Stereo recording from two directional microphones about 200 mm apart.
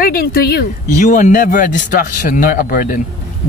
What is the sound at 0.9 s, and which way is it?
A woman's voice, 40° left (ahead or behind).